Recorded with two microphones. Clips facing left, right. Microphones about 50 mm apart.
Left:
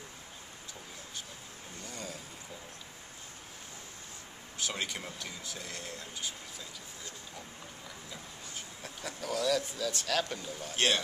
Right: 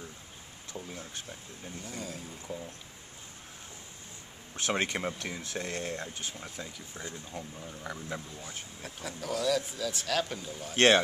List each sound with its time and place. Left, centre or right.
1.9 s speech: centre
4.6 s speech: right
8.8 s speech: centre